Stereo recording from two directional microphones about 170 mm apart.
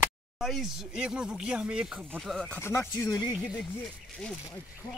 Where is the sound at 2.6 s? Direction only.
15° left (ahead or behind).